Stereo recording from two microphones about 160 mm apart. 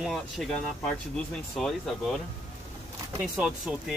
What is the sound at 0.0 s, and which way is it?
Speech, centre (ahead or behind).